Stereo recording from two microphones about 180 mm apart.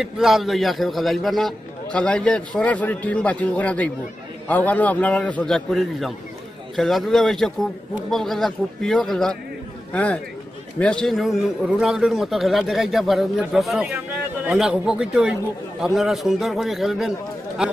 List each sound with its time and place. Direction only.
0.0 s a man's voice: centre (ahead or behind)
10.8 s a man's voice: 5° left (ahead or behind)